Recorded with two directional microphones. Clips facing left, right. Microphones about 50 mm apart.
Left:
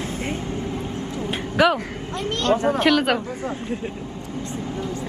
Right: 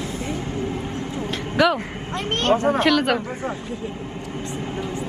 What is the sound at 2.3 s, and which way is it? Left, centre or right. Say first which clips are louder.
Speech: right 1 dB; right.